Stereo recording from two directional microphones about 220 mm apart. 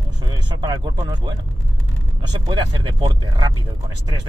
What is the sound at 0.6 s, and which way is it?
Speech, 20° right (ahead or behind).